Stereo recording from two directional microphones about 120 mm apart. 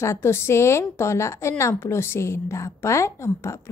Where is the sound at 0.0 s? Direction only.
20° left (ahead or behind).